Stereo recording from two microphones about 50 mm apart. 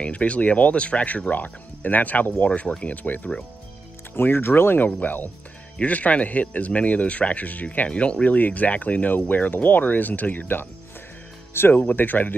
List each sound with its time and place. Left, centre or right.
0.0 s a man's voice: left
4.1 s a man's voice: left
11.7 s a man's voice: left